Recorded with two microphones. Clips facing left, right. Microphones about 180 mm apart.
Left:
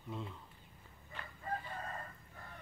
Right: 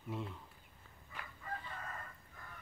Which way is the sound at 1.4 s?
35° left (ahead or behind).